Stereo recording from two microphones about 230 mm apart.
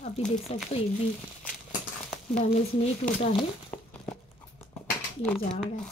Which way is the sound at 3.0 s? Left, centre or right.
Left.